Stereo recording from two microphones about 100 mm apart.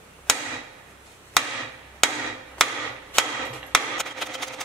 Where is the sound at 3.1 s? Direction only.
20° left (ahead or behind).